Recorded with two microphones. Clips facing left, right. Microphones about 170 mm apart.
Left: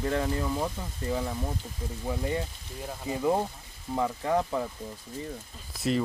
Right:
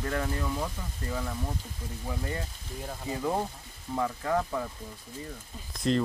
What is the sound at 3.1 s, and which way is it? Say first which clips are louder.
Speech: left 4 dB; 15° left (ahead or behind).